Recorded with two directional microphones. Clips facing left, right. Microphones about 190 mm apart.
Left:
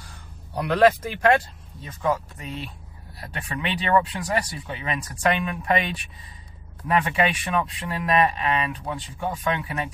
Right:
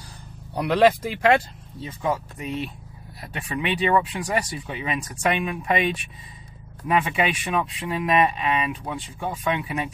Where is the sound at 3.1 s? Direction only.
15° right (ahead or behind).